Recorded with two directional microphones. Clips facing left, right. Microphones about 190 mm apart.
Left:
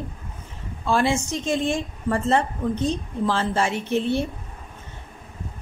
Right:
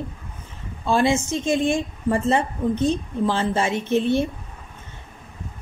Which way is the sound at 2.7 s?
15° left (ahead or behind).